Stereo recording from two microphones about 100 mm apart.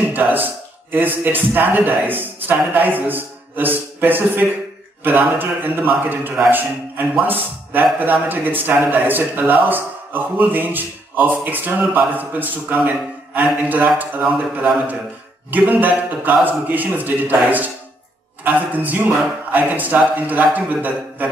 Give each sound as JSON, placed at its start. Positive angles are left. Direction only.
{"t": 0.1, "sound": "a man's voice", "side_deg": -20}